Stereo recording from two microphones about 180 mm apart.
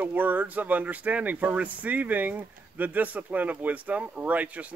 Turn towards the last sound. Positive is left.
turn(degrees=-10)  # may be behind; listen again after turning